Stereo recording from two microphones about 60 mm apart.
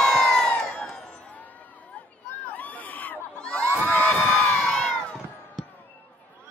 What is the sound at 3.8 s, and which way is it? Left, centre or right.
Crowd, left.